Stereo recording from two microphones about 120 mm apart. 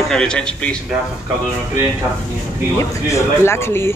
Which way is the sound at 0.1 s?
5° left (ahead or behind).